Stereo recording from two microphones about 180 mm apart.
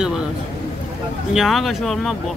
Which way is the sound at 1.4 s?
Centre (ahead or behind).